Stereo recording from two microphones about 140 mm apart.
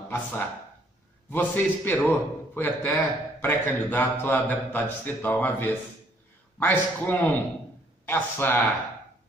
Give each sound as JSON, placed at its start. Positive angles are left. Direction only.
{"t": 0.1, "sound": "a man's voice", "side_deg": 15}